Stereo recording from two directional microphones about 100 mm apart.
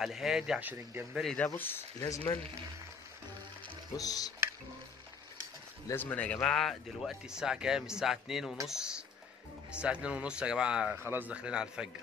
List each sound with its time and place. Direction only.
0.0 s speech: 5° right (ahead or behind)
0.6 s speech: 20° right (ahead or behind)
1.1 s speech: 5° left (ahead or behind)
1.4 s speech: 20° left (ahead or behind)
2.0 s speech: 35° left (ahead or behind)
3.9 s speech: 40° left (ahead or behind)
5.9 s speech: 15° left (ahead or behind); by 11.0 s 10° right (ahead or behind)
11.0 s speech: 20° right (ahead or behind)